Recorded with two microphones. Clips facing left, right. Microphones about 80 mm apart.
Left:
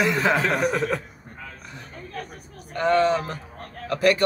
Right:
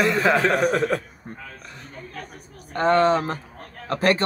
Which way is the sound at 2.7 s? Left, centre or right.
Right.